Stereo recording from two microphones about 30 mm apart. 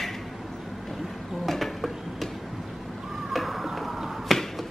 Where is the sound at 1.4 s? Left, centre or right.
Centre.